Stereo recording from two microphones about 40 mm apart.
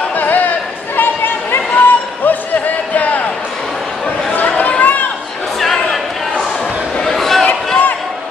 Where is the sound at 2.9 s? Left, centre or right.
Left.